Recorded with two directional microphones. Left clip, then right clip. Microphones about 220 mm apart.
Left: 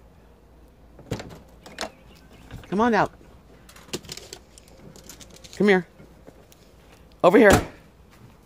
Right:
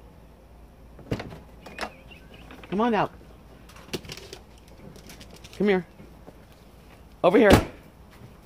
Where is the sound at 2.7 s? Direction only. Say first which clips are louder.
Left 3 dB; 40° left (ahead or behind).